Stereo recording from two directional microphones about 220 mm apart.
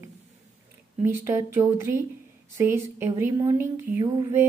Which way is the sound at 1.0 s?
10° right (ahead or behind).